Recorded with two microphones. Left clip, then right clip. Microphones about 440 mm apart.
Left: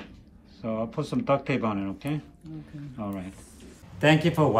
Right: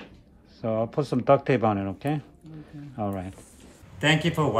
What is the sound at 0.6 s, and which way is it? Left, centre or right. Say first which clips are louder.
Speech: right 4 dB; centre.